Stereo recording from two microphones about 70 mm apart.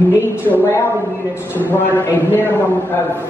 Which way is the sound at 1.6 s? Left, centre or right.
Left.